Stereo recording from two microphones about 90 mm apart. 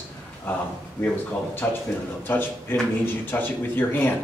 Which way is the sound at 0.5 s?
20° left (ahead or behind).